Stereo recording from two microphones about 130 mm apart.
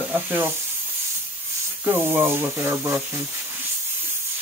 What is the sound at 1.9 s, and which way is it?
Speech, 15° right (ahead or behind).